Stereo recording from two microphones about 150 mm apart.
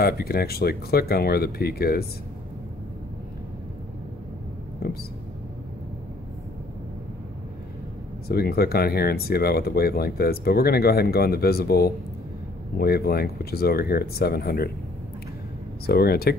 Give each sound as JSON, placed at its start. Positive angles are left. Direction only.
{"t": 0.0, "sound": "speech", "side_deg": 90}
{"t": 4.8, "sound": "a sound", "side_deg": 90}
{"t": 8.3, "sound": "speech", "side_deg": 90}
{"t": 15.9, "sound": "speech", "side_deg": 90}